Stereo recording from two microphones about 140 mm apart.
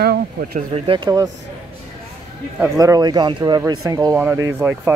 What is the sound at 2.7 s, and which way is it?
Speech, 25° right (ahead or behind).